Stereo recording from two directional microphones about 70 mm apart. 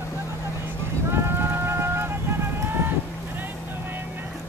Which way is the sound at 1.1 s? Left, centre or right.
Right.